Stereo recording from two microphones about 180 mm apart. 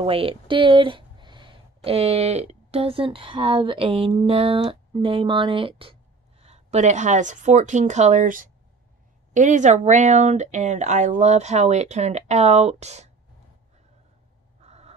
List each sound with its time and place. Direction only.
0.0 s speech: 30° right (ahead or behind)
14.6 s fowl: 35° right (ahead or behind)